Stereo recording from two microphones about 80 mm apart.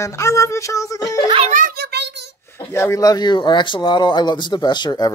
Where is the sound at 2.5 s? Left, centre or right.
Left.